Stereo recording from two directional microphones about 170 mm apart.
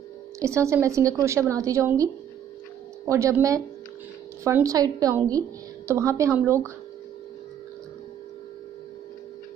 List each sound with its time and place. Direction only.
0.4 s a woman's voice: 15° right (ahead or behind)
3.1 s a woman's voice: 20° right (ahead or behind)